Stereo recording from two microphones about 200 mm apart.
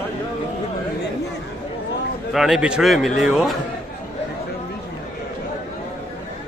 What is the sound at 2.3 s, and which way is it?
A man's voice, centre (ahead or behind).